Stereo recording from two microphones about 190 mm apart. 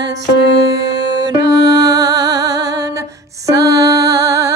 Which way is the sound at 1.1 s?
20° right (ahead or behind).